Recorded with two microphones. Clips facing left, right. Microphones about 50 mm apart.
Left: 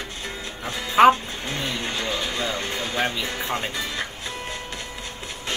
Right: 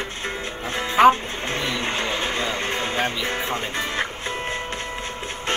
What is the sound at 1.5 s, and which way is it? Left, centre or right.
Music, right.